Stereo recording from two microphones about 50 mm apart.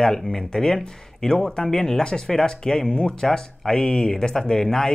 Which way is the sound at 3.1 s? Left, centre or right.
Centre.